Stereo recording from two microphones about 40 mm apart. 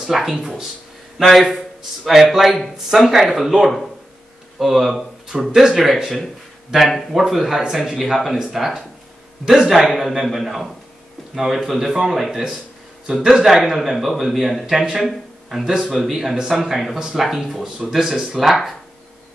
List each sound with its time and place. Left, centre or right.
0.0 s a man's voice: centre
15.7 s speech: centre
16.0 s speech: centre